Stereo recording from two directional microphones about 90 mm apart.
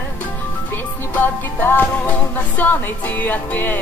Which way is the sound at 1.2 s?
20° left (ahead or behind).